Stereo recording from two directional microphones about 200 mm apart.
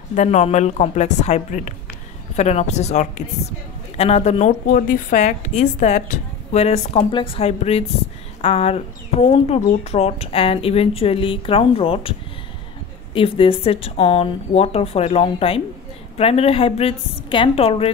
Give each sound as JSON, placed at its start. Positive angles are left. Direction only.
{"t": 0.1, "sound": "a woman's voice", "side_deg": 35}
{"t": 4.6, "sound": "a woman's voice", "side_deg": 45}